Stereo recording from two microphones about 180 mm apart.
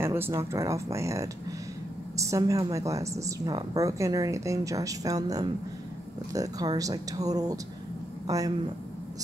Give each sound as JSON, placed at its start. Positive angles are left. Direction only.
{"t": 0.0, "sound": "a woman's voice", "side_deg": -15}